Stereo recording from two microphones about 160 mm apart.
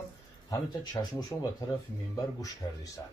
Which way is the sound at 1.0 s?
25° left (ahead or behind).